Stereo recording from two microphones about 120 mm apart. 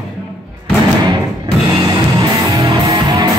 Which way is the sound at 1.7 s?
30° right (ahead or behind).